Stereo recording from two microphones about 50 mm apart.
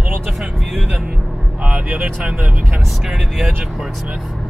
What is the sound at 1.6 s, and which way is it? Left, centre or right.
Vehicle, right.